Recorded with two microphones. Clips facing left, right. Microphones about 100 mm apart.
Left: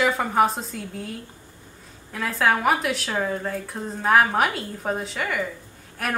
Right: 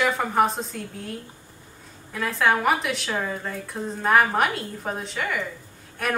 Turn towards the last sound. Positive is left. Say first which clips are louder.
# right 1 dB
turn(degrees=0)  # may be behind; listen again after turning